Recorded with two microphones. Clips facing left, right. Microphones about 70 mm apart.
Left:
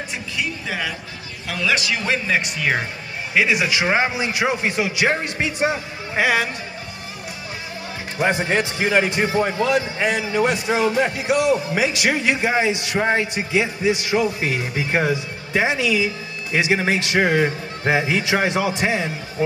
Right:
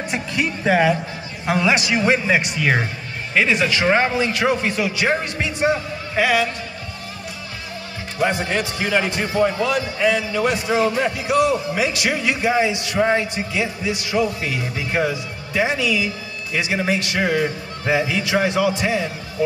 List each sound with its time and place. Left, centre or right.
0.1 s speech: right
1.5 s a man's voice: right
2.3 s speech: centre
3.3 s a man's voice: centre
8.2 s a man's voice: left